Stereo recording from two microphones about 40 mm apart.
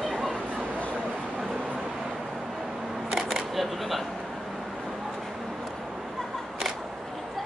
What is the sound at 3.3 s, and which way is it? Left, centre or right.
Camera, centre.